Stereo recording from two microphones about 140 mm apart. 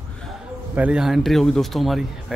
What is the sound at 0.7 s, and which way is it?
Speech, 5° right (ahead or behind).